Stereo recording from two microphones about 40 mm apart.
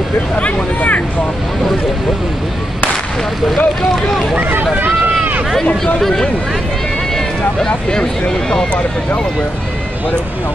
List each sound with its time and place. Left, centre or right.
0.7 s vehicle: left
3.5 s speech: centre
4.4 s speech: right
4.7 s run: right
5.9 s speech: centre